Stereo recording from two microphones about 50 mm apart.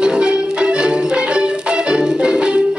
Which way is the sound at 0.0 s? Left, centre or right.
Centre.